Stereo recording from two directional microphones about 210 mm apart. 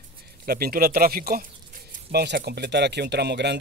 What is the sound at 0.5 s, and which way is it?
Speech, 45° right (ahead or behind).